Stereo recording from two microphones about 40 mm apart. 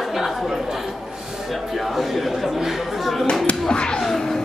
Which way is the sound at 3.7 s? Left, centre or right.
Left.